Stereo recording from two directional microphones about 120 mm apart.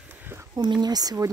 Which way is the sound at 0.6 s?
35° right (ahead or behind).